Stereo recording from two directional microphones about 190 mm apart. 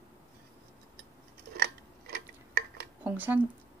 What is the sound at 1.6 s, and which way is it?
Scissors, 55° right (ahead or behind).